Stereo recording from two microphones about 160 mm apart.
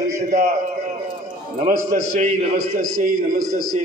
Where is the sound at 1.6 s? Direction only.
55° right (ahead or behind).